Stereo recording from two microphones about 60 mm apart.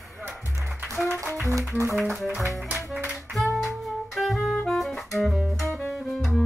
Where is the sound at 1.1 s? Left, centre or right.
Right.